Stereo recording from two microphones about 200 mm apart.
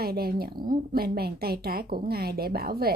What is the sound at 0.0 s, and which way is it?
A woman's voice, 50° right (ahead or behind).